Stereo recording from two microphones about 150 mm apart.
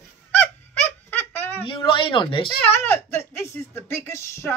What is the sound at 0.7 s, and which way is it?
Baby laughter, 10° left (ahead or behind).